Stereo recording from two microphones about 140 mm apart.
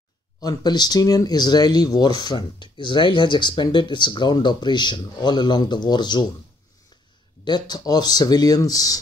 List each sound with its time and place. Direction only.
0.4 s speech: 30° left (ahead or behind)
7.4 s speech: 30° left (ahead or behind)